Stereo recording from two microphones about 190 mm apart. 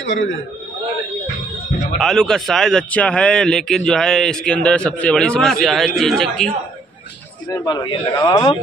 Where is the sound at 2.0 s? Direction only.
5° left (ahead or behind).